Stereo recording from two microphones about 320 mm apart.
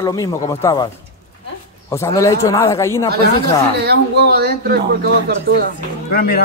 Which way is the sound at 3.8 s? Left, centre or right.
Right.